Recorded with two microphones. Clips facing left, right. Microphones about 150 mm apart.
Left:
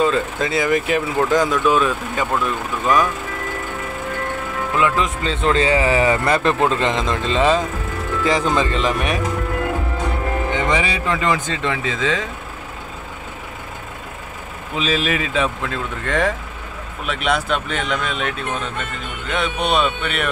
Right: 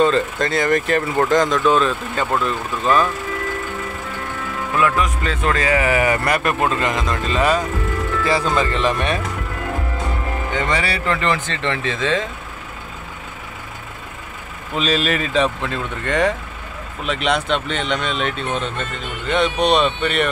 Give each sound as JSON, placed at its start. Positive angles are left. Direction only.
{"t": 0.0, "sound": "speech", "side_deg": 5}
{"t": 4.7, "sound": "speech", "side_deg": 20}
{"t": 10.5, "sound": "speech", "side_deg": 15}
{"t": 14.8, "sound": "speech", "side_deg": 5}